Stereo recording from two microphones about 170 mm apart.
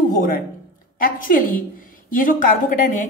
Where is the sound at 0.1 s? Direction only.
55° left (ahead or behind).